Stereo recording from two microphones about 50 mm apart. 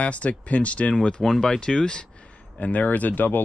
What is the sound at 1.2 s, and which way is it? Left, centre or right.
Speech, centre.